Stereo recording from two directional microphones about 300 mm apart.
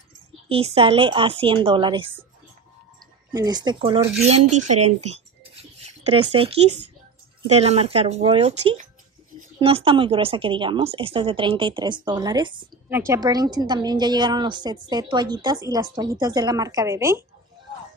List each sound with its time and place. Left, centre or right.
0.5 s a woman's voice: centre
3.3 s a woman's voice: centre